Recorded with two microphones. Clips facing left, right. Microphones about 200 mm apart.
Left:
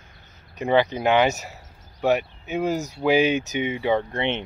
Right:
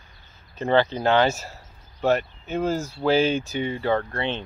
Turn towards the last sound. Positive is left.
turn(degrees=20)  # may be behind; listen again after turning